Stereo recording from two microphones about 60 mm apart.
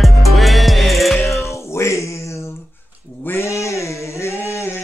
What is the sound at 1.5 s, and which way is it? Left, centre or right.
Music, left.